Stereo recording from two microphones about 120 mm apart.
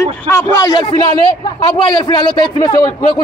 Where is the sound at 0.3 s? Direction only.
25° left (ahead or behind).